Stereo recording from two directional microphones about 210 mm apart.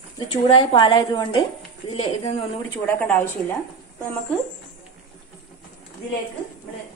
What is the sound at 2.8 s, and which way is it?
Speech, 10° left (ahead or behind).